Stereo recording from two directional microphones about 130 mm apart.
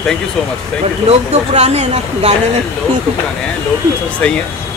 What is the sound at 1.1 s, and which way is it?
Speech, 60° right (ahead or behind).